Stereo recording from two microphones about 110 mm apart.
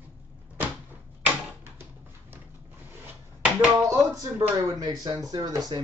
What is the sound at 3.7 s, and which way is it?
Speech, 30° right (ahead or behind).